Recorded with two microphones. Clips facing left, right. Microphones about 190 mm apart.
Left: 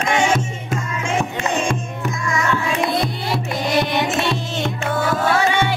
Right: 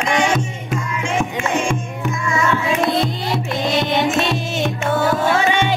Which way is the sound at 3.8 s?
15° right (ahead or behind).